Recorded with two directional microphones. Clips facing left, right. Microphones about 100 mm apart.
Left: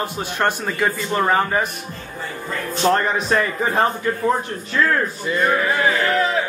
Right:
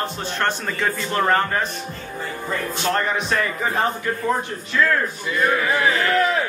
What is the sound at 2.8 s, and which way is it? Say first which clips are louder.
Speech: left 5 dB; 35° left (ahead or behind).